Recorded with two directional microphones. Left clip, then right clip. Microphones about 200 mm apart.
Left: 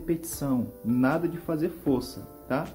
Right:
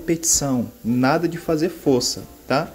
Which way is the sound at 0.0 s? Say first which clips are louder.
Right 10 dB; 20° right (ahead or behind).